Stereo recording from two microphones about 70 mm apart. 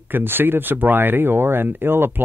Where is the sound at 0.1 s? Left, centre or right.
Right.